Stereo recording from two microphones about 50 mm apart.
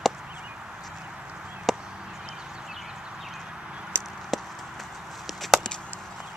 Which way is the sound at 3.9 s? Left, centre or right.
Right.